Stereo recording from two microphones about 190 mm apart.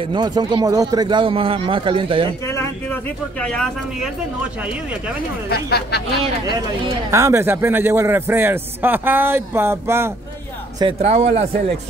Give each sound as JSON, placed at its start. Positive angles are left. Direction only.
{"t": 0.0, "sound": "speech", "side_deg": -25}
{"t": 2.4, "sound": "speech", "side_deg": 15}
{"t": 5.5, "sound": "speech", "side_deg": 55}
{"t": 7.1, "sound": "a man's voice", "side_deg": -15}
{"t": 10.8, "sound": "speech", "side_deg": -30}